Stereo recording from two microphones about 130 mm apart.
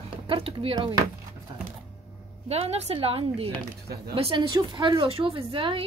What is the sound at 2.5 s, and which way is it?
Speech, 55° right (ahead or behind).